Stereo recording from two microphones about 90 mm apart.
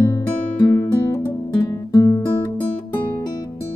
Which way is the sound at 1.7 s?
40° left (ahead or behind).